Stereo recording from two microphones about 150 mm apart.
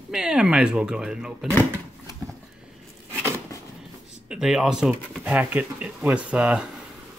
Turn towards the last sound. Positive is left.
turn(degrees=-5)  # may be behind; listen again after turning